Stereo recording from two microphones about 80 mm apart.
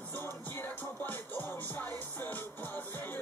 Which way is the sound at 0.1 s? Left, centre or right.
Left.